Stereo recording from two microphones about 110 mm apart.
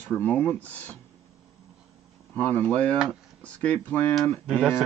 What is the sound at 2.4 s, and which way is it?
Speech, 15° left (ahead or behind).